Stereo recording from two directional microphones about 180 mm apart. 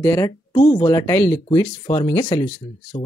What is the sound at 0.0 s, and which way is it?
Speech, 15° left (ahead or behind).